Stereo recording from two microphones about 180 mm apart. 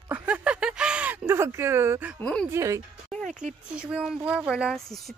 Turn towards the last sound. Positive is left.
turn(degrees=-5)  # may be behind; listen again after turning